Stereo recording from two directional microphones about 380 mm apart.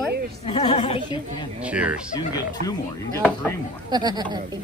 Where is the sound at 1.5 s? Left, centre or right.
Centre.